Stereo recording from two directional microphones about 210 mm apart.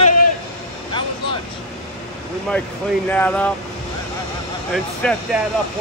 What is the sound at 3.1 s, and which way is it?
Speech, 5° left (ahead or behind).